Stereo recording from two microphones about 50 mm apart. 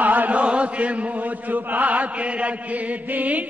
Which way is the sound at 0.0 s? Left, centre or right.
Right.